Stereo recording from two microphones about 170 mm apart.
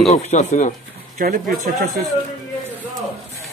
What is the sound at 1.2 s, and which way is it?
Speech, 55° right (ahead or behind).